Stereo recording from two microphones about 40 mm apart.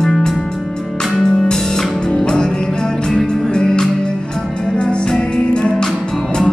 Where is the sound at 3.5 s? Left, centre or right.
Centre.